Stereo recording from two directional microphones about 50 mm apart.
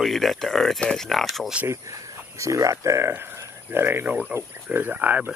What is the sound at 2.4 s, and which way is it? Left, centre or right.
Speech, right.